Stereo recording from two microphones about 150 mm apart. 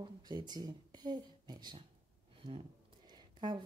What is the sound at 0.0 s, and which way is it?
Speech, 30° right (ahead or behind).